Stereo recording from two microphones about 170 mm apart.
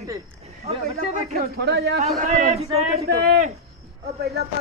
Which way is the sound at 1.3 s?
60° right (ahead or behind).